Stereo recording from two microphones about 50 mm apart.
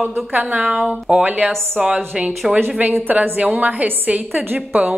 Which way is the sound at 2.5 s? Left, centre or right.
Right.